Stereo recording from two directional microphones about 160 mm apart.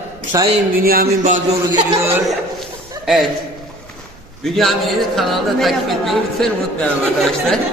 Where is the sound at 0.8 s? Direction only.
60° right (ahead or behind).